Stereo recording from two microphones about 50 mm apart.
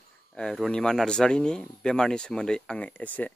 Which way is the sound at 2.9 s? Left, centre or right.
Left.